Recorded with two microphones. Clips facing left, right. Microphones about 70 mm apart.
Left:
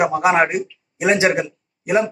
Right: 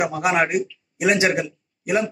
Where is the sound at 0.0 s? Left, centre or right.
Left.